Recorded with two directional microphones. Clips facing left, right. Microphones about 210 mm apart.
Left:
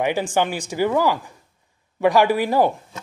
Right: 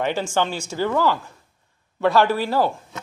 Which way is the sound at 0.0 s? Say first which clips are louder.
Left 2 dB; 15° left (ahead or behind).